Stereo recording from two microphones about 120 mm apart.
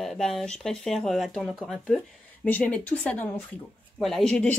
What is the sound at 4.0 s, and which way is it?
Speech, 5° left (ahead or behind).